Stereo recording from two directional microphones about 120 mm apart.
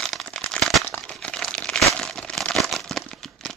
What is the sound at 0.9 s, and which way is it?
Crumpling, 10° left (ahead or behind).